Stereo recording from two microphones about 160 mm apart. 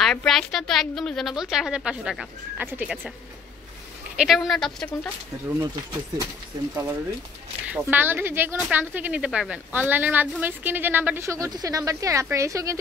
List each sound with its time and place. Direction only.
0.0 s a woman's voice: 5° left (ahead or behind)
4.2 s a woman's voice: centre (ahead or behind)
6.7 s speech: 15° right (ahead or behind)